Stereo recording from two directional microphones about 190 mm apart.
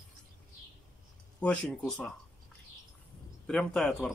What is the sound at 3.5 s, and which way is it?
Speech, 5° left (ahead or behind).